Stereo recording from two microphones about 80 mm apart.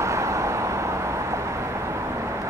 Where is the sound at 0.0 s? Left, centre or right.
Right.